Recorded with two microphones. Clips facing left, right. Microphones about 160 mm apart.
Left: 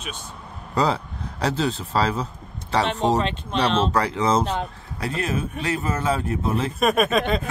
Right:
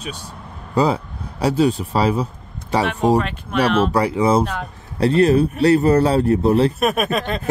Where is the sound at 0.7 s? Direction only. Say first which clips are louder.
Right 4 dB; 10° right (ahead or behind).